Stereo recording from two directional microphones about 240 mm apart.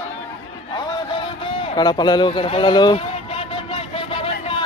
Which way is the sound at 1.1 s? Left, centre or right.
Centre.